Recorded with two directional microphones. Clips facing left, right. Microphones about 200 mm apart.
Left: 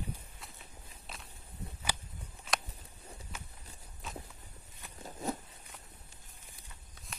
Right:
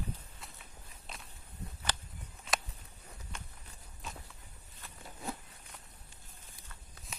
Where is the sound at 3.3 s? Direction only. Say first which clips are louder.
Left 1 dB; 5° left (ahead or behind).